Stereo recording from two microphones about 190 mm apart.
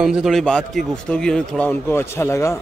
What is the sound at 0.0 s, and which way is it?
Speech, 5° right (ahead or behind).